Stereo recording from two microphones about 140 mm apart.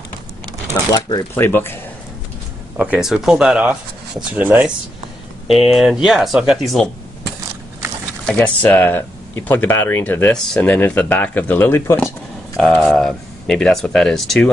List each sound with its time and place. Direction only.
0.9 s speech: 30° left (ahead or behind)
1.3 s speech: 15° left (ahead or behind)
2.8 s speech: 5° right (ahead or behind)
8.4 s speech: 15° left (ahead or behind)
12.5 s speech: 5° left (ahead or behind)